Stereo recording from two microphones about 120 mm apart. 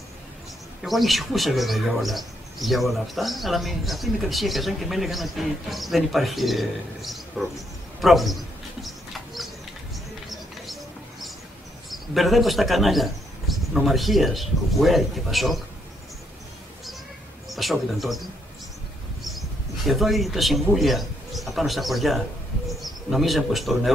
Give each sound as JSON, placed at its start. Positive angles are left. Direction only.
{"t": 0.8, "sound": "speech", "side_deg": 0}
{"t": 8.0, "sound": "bird", "side_deg": 0}
{"t": 10.3, "sound": "mouse", "side_deg": 0}
{"t": 11.9, "sound": "speech", "side_deg": 0}
{"t": 17.5, "sound": "a man's voice", "side_deg": 0}
{"t": 19.9, "sound": "a man's voice", "side_deg": 0}